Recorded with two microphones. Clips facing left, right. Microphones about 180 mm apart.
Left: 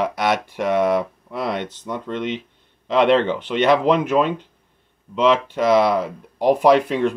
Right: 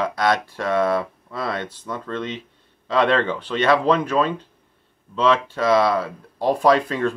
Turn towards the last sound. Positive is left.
turn(degrees=15)  # may be behind; listen again after turning